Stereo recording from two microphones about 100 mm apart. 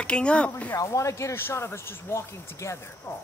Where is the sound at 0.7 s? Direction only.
30° left (ahead or behind).